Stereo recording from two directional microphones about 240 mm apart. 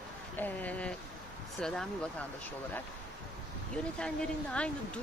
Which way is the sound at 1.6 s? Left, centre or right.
Centre.